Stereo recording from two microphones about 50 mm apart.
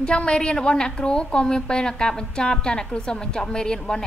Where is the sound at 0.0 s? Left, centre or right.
Left.